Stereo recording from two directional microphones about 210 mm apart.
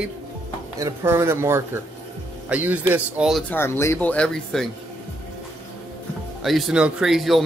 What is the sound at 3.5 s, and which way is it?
Speech, 10° left (ahead or behind).